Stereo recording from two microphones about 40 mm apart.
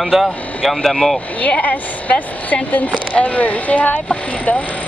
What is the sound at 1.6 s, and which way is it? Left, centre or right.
A woman's voice, left.